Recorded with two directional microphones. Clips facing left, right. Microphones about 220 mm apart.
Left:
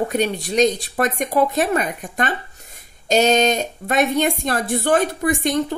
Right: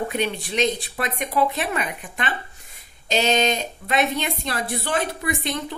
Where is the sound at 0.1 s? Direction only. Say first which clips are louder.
Left 5 dB; 40° left (ahead or behind).